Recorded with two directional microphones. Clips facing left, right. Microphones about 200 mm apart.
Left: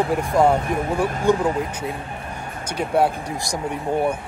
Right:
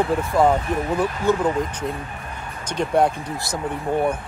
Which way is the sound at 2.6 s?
5° left (ahead or behind).